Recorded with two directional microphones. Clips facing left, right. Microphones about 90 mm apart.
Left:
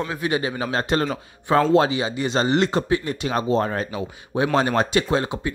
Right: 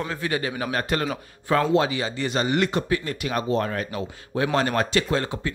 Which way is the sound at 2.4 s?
30° left (ahead or behind).